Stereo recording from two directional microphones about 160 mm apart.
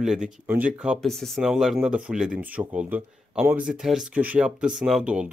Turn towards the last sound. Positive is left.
turn(degrees=-5)  # may be behind; listen again after turning